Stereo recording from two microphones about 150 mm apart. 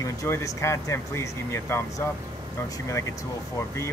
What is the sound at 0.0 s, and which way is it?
Speech, 20° left (ahead or behind).